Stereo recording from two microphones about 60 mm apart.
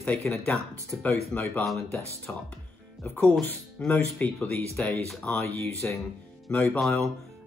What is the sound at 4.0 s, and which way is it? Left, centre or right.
Speech, left.